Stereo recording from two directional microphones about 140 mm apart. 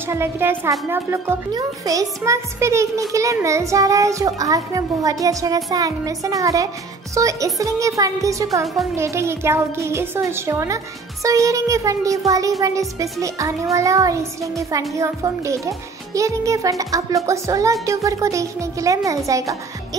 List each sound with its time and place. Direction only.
0.1 s a woman's voice: 15° right (ahead or behind)